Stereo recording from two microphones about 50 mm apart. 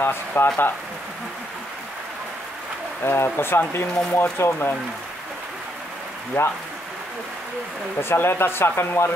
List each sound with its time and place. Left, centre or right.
0.0 s speech: left
3.0 s speech: left
6.4 s speech: left
8.0 s speech: left